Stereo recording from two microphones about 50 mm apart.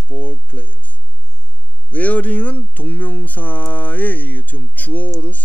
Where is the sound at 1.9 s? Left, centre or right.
Left.